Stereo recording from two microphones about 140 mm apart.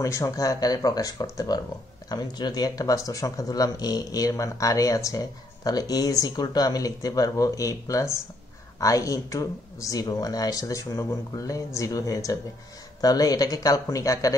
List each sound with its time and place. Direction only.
0.0 s speech: 20° left (ahead or behind)